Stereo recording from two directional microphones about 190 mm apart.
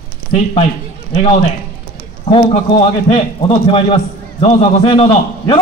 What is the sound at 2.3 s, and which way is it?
A man's voice, 30° left (ahead or behind).